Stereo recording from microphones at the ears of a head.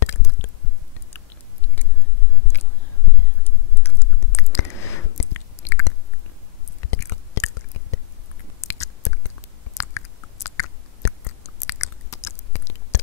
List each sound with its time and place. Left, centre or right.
0.0 s squish: left
2.4 s whispering: left
3.8 s chewing: left
6.8 s whispering: left
8.5 s chewing: left